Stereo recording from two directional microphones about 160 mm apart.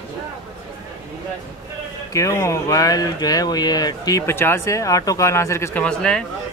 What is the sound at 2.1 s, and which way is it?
Speech, 20° left (ahead or behind).